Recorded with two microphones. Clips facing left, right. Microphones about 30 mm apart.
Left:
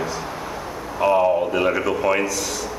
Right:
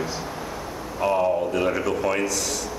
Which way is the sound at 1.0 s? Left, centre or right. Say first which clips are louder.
Left 4 dB; left.